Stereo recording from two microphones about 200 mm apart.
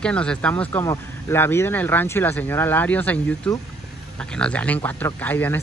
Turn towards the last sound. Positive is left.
turn(degrees=10)  # may be behind; listen again after turning